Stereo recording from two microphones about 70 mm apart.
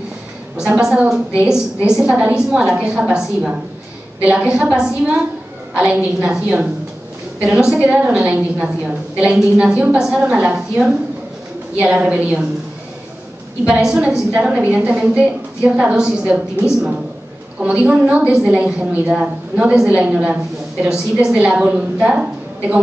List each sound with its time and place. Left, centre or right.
0.6 s a woman's voice: centre
13.7 s a woman's voice: centre